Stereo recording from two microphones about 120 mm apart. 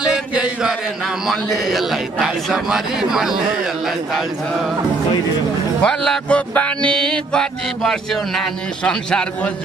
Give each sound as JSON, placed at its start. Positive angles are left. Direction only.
{"t": 0.0, "sound": "a sound", "side_deg": -10}
{"t": 1.2, "sound": "a man's voice", "side_deg": 0}
{"t": 5.8, "sound": "speech", "side_deg": 10}